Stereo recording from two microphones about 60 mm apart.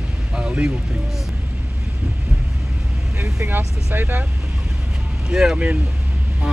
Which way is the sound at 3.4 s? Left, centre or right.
Right.